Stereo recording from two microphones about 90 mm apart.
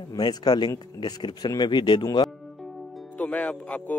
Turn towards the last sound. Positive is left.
turn(degrees=15)  # may be behind; listen again after turning